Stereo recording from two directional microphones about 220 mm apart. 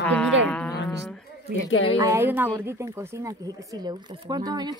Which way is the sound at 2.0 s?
15° right (ahead or behind).